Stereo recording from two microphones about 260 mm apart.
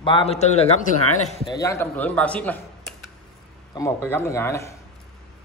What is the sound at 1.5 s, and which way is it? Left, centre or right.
Speech, centre.